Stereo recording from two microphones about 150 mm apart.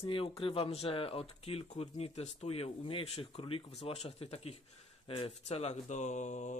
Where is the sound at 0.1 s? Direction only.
35° left (ahead or behind).